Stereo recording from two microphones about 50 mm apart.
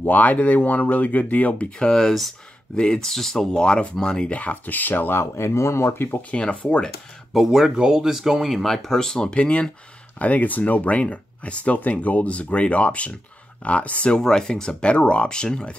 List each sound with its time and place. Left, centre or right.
0.0 s speech: left
1.9 s speech: centre
2.7 s speech: centre
4.4 s speech: left
5.2 s speech: left
6.3 s speech: left
7.3 s speech: centre; by 14.2 s left
14.2 s speech: centre